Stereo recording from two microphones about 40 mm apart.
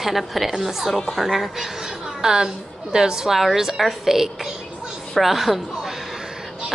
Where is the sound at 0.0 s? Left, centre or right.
Centre.